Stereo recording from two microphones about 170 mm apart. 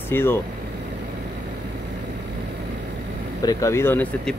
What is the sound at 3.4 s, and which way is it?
Speech, 20° left (ahead or behind).